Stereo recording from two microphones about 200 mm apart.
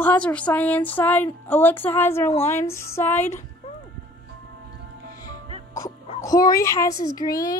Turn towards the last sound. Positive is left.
turn(degrees=20)  # may be behind; listen again after turning